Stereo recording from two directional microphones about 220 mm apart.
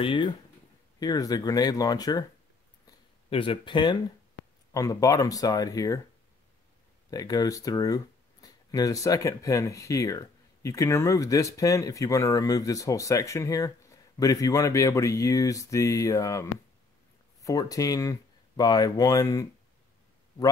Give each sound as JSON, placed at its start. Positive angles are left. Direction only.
{"t": 0.0, "sound": "speech", "side_deg": 25}
{"t": 3.3, "sound": "speech", "side_deg": 25}
{"t": 7.1, "sound": "speech", "side_deg": 15}